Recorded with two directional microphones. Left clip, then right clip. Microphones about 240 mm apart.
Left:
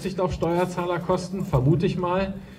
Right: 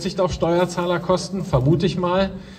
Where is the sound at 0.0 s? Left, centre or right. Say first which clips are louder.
Right 5 dB; centre.